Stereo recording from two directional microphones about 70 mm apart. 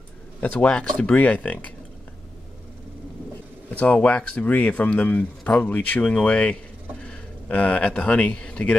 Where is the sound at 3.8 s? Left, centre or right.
Centre.